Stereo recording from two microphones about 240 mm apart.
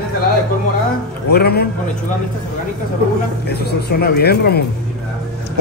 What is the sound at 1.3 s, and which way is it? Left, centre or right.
Speech, left.